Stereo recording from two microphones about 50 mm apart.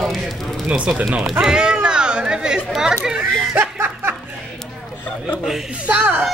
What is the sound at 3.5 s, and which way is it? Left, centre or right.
Chuckle, right.